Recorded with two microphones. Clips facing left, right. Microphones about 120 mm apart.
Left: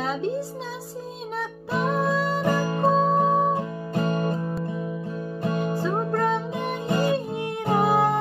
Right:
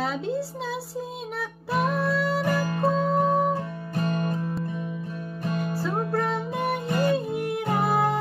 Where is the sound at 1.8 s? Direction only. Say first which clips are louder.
Left 3 dB; 25° left (ahead or behind).